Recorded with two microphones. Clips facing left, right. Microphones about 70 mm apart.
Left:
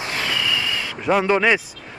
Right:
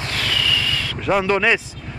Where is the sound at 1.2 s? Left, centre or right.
Centre.